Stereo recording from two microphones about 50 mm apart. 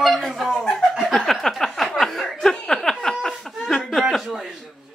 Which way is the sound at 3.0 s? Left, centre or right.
Centre.